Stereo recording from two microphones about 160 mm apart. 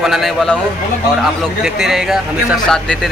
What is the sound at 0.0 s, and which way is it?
A man's voice, centre (ahead or behind).